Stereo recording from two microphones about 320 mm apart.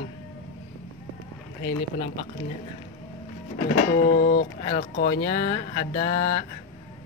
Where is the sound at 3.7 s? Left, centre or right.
Left.